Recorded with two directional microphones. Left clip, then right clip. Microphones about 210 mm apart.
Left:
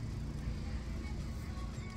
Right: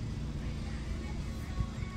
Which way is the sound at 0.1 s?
40° right (ahead or behind).